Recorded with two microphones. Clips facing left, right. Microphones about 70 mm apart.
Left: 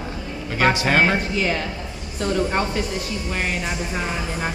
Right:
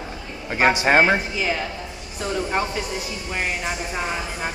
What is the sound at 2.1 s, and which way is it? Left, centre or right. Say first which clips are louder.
A woman's voice: left 2 dB; centre.